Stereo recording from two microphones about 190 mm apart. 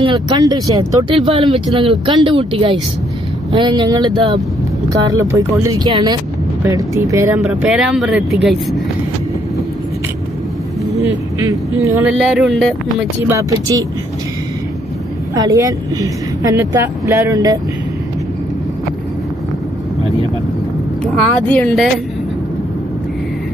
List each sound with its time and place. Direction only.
0.0 s speech: 25° right (ahead or behind); by 8.5 s 5° right (ahead or behind)
10.9 s speech: 15° right (ahead or behind)
12.2 s speech: centre (ahead or behind)
12.8 s speech: 15° right (ahead or behind)
15.3 s speech: 15° right (ahead or behind)
21.0 s speech: 5° left (ahead or behind)